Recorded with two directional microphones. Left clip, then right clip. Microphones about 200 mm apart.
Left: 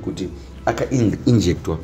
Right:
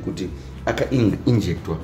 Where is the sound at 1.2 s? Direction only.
25° left (ahead or behind).